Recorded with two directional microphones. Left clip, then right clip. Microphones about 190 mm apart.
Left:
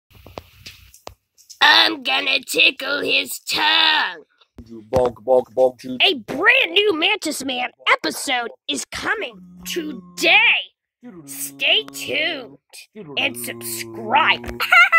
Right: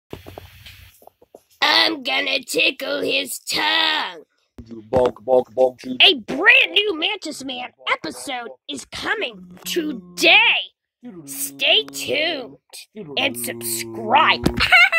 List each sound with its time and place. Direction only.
1.6 s speech: 5° left (ahead or behind)
4.9 s speech: 50° left (ahead or behind)
6.2 s speech: 25° left (ahead or behind)
6.7 s a woman's voice: 45° left (ahead or behind)
10.1 s speech: 5° right (ahead or behind)